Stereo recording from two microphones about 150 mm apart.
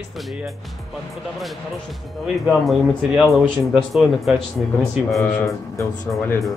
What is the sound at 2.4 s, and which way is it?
Speech, centre (ahead or behind).